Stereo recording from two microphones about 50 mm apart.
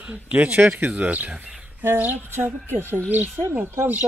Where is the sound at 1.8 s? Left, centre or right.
Right.